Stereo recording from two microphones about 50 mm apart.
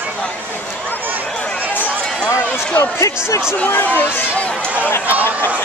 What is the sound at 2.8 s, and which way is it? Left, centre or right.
Speech, left.